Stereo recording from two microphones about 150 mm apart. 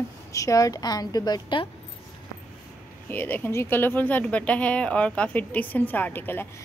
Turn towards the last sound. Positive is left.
turn(degrees=15)  # may be behind; listen again after turning